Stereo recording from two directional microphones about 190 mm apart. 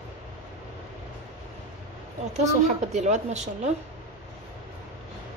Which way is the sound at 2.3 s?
35° right (ahead or behind).